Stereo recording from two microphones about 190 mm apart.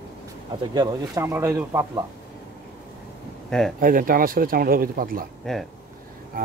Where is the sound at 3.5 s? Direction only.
Centre (ahead or behind).